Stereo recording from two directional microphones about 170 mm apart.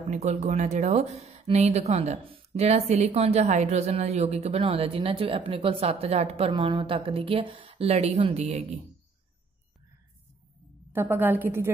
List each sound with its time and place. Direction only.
0.1 s speech: 40° right (ahead or behind)
10.9 s a woman's voice: 15° right (ahead or behind)